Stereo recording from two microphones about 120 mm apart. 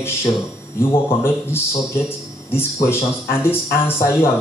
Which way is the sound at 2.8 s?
20° left (ahead or behind).